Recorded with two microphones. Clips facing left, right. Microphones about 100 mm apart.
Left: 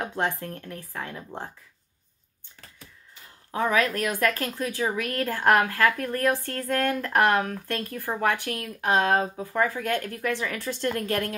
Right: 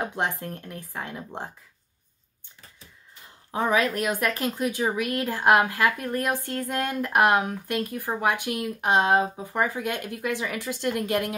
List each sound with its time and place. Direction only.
0.1 s speech: 20° right (ahead or behind)
3.5 s speech: 20° right (ahead or behind)